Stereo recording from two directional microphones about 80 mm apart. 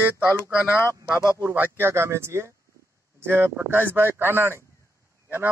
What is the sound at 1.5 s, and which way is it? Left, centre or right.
Speech, right.